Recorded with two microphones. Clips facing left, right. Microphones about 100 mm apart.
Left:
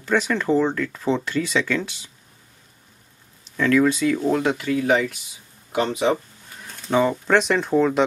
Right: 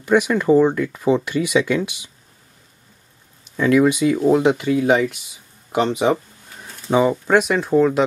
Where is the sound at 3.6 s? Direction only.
15° right (ahead or behind).